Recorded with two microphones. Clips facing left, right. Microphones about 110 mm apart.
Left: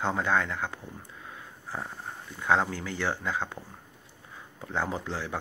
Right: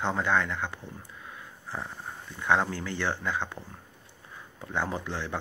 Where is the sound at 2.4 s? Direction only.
20° left (ahead or behind).